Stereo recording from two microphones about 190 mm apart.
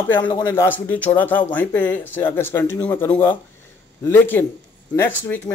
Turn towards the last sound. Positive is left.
turn(degrees=10)  # may be behind; listen again after turning